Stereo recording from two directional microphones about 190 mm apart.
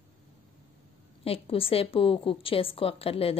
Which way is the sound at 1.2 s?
30° left (ahead or behind).